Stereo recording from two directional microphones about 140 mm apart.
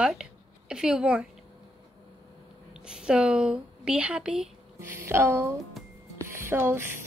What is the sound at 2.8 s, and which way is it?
A woman's voice, 5° right (ahead or behind).